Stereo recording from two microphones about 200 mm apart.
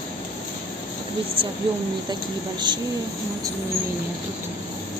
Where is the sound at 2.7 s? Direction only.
20° right (ahead or behind).